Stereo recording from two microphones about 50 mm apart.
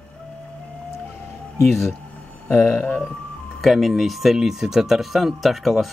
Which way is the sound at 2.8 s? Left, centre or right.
Left.